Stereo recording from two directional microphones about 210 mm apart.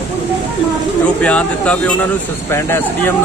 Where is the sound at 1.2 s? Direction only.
5° left (ahead or behind).